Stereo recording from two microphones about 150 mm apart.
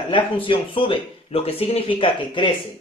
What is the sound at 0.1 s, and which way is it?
Speech, 35° left (ahead or behind).